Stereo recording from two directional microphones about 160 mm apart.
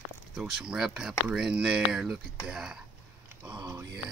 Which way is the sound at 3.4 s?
25° right (ahead or behind).